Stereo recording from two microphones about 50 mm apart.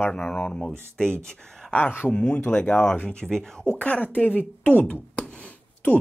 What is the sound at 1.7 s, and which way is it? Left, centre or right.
Speech, left.